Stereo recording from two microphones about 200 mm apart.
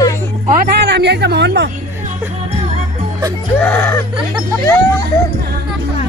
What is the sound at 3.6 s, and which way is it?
Whimper, 10° left (ahead or behind).